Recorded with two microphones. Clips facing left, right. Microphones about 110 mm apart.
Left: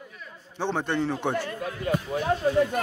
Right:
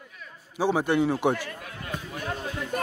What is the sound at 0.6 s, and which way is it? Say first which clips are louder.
Speech: right 4 dB; 10° right (ahead or behind).